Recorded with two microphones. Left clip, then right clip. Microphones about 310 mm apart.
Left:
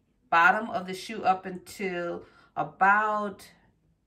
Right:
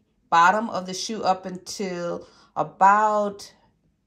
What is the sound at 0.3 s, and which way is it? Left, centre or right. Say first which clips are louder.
Speech: right 4 dB; centre.